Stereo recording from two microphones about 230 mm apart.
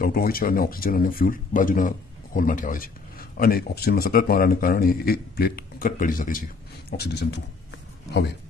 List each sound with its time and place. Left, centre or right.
0.0 s a man's voice: left